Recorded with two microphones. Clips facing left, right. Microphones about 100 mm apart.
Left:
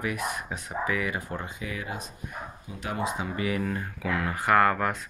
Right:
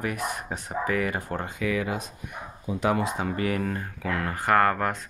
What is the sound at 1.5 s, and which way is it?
Speech, 90° right.